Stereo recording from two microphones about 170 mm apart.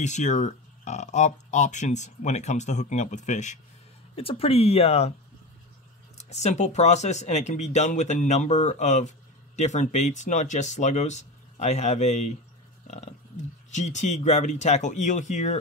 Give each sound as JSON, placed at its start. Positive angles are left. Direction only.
{"t": 0.0, "sound": "speech", "side_deg": 45}
{"t": 4.1, "sound": "speech", "side_deg": 35}
{"t": 6.1, "sound": "speech", "side_deg": 40}
{"t": 13.7, "sound": "speech", "side_deg": 45}